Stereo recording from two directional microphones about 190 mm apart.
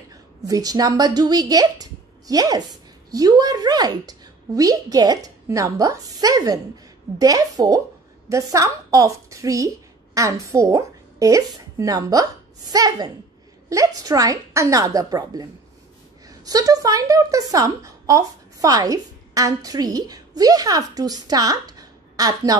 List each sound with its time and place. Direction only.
0.4 s a woman's voice: 20° right (ahead or behind)